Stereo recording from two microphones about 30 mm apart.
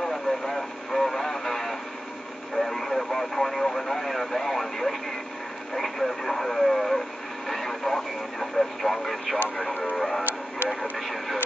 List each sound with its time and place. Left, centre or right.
0.0 s vehicle: centre
2.5 s radio: centre
9.9 s music: centre
10.7 s vehicle: centre